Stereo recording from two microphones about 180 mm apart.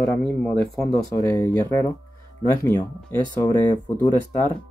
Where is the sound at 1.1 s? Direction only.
20° left (ahead or behind).